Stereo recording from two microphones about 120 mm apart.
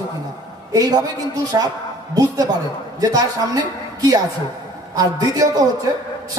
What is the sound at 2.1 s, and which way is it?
A woman's voice, 30° right (ahead or behind).